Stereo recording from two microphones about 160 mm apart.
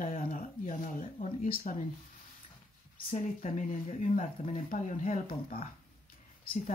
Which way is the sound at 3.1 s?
55° left (ahead or behind).